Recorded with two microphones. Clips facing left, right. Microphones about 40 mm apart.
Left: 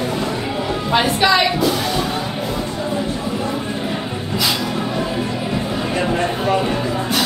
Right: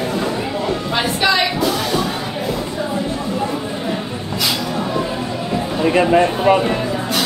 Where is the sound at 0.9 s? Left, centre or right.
Centre.